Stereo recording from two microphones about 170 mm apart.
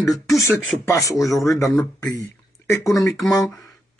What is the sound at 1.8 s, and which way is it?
A man's voice, 20° left (ahead or behind).